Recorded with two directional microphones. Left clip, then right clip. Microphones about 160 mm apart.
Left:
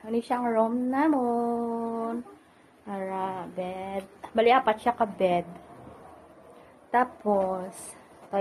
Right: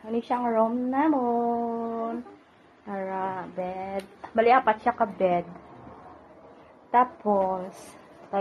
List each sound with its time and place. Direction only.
0.0 s speech: 20° left (ahead or behind)
6.9 s speech: 10° left (ahead or behind)